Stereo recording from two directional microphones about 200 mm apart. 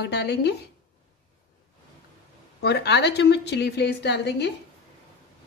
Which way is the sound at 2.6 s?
55° left (ahead or behind).